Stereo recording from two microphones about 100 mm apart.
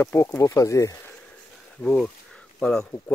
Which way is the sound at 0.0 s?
25° left (ahead or behind).